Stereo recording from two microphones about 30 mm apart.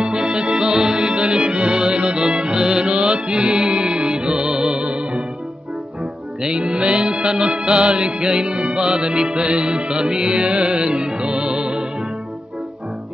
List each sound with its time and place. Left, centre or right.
0.0 s music: right
6.6 s music: right